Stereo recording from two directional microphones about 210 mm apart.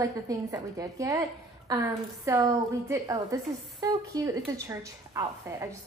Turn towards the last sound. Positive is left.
turn(degrees=-15)  # may be behind; listen again after turning